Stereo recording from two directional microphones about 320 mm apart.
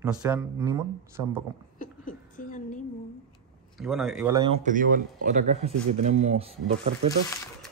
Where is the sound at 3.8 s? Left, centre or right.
Centre.